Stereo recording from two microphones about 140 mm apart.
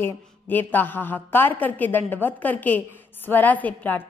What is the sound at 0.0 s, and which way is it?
A woman's voice, 15° left (ahead or behind).